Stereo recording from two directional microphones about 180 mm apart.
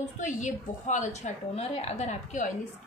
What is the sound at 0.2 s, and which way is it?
A woman's voice, 45° left (ahead or behind).